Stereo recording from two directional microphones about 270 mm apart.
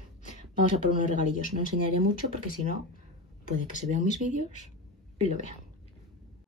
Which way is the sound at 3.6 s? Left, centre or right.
Left.